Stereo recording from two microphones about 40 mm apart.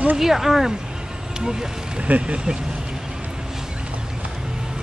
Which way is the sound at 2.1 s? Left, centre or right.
Right.